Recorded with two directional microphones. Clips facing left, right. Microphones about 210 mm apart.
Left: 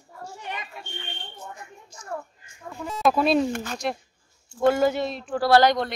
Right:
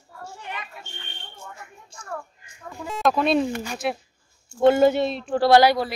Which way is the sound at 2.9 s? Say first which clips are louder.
Even; centre (ahead or behind).